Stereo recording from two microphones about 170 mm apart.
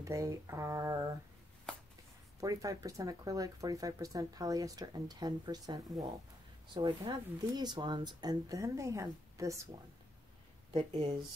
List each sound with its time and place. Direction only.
0.0 s speech: 20° right (ahead or behind)
2.4 s speech: 20° right (ahead or behind)
10.7 s speech: 35° right (ahead or behind)